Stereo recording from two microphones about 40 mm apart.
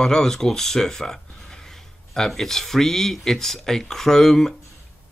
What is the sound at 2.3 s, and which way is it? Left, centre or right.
Speech, centre.